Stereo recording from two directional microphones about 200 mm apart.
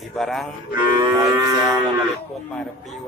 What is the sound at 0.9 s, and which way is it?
Livestock, 15° right (ahead or behind).